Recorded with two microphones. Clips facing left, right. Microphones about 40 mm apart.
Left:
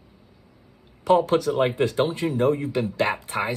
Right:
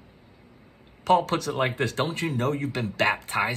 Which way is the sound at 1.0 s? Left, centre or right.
Right.